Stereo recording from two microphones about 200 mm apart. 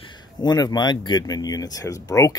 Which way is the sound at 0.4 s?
20° left (ahead or behind).